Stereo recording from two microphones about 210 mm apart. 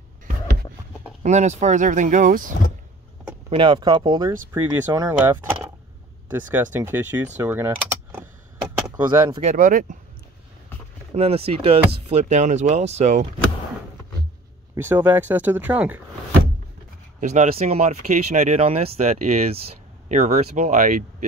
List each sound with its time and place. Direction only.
1.2 s speech: 35° right (ahead or behind)
3.4 s speech: 25° right (ahead or behind)
7.3 s mechanisms: 10° right (ahead or behind)
9.0 s speech: 20° right (ahead or behind)
9.4 s speech: 35° right (ahead or behind)
11.1 s speech: 30° right (ahead or behind)
14.8 s speech: 10° right (ahead or behind)
17.2 s speech: 35° right (ahead or behind)